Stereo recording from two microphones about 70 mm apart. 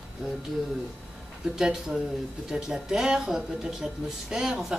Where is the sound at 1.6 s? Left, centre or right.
Centre.